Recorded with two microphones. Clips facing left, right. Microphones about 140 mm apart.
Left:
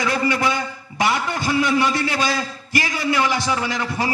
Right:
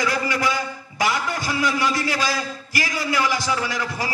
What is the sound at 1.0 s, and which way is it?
A man's voice, 25° left (ahead or behind).